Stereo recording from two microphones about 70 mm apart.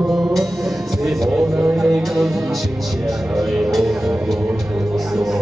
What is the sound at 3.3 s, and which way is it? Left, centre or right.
Music, centre.